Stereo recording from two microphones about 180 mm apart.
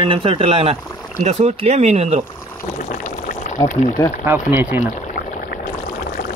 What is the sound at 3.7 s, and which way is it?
Speech, 45° left (ahead or behind).